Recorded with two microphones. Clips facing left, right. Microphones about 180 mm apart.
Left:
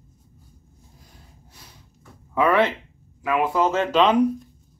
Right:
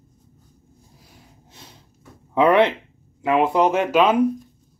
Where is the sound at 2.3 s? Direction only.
20° right (ahead or behind).